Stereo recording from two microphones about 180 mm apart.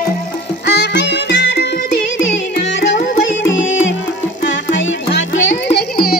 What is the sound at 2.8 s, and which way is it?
Music, 85° left.